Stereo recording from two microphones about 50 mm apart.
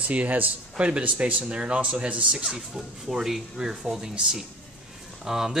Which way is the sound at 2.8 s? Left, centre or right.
Centre.